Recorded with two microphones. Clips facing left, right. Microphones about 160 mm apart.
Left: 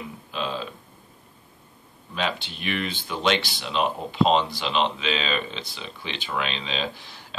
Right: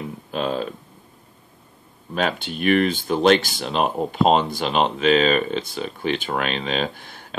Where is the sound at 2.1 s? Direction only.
50° right (ahead or behind).